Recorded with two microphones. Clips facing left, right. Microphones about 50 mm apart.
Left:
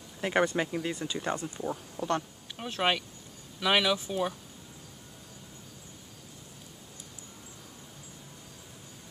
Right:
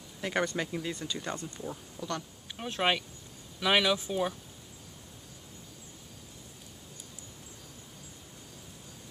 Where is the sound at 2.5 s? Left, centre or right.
Centre.